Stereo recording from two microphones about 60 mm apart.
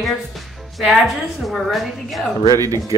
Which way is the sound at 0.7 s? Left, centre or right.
Centre.